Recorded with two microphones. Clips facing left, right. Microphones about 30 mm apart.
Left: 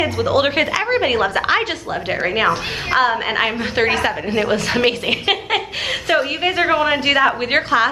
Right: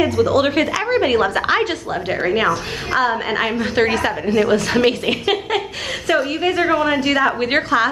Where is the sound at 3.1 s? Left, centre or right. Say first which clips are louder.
Left 1 dB; centre.